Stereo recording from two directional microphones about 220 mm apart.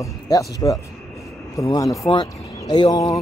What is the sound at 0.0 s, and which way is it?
Speech, 15° left (ahead or behind).